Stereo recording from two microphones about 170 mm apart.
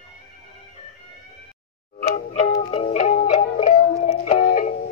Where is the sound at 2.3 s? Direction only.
35° left (ahead or behind).